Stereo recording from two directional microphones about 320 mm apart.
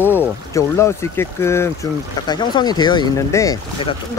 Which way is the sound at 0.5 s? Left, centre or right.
Centre.